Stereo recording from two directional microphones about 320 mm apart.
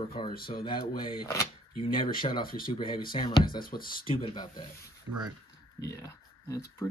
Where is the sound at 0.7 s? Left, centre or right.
Centre.